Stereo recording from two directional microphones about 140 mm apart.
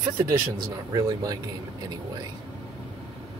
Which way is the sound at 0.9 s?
25° right (ahead or behind).